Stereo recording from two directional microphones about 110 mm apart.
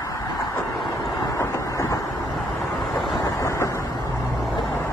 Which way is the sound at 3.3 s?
25° left (ahead or behind).